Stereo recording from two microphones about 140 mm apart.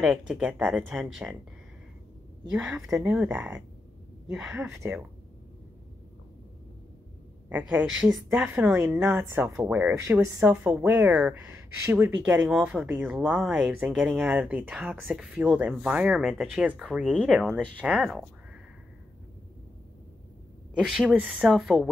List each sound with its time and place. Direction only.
0.0 s speech: 5° right (ahead or behind)
2.5 s speech: 5° right (ahead or behind)
4.6 s speech: 20° right (ahead or behind)
7.4 s speech: 10° right (ahead or behind)
17.3 s speech: 10° right (ahead or behind)
20.8 s speech: 5° right (ahead or behind)